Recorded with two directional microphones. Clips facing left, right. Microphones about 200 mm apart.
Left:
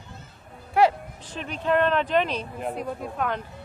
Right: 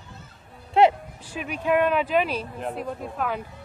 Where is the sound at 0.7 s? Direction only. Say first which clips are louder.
Right 2 dB; 20° right (ahead or behind).